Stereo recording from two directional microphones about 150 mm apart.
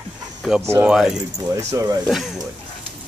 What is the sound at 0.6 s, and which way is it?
Speech, 15° right (ahead or behind).